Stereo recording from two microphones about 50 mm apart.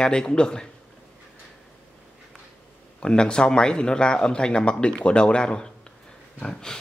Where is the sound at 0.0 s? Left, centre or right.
Centre.